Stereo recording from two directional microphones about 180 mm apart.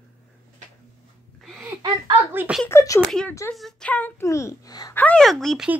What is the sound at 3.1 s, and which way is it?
A woman's voice, 5° left (ahead or behind).